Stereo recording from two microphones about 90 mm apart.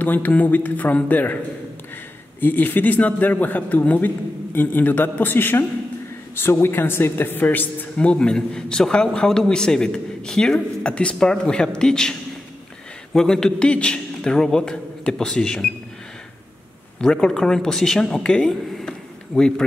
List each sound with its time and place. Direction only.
0.0 s a man's voice: 20° left (ahead or behind)
2.4 s a man's voice: 20° left (ahead or behind)
17.0 s a woman's voice: 10° left (ahead or behind)
18.4 s a sound: centre (ahead or behind)